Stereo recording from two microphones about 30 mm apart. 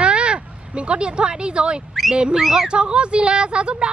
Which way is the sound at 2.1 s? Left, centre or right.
Right.